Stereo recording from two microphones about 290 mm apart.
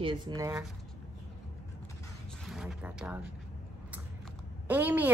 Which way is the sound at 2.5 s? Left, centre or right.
Centre.